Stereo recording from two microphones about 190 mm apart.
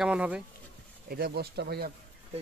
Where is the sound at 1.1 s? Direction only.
55° right (ahead or behind).